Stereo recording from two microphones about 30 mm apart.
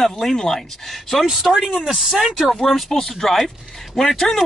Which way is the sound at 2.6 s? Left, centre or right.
Centre.